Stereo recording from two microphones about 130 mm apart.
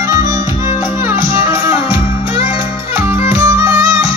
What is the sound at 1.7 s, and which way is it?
Music, 40° left (ahead or behind).